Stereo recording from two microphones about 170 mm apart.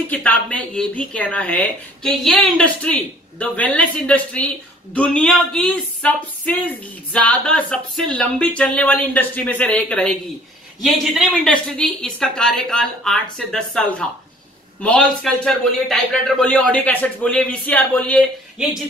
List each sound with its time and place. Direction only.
0.1 s a woman's voice: 10° left (ahead or behind)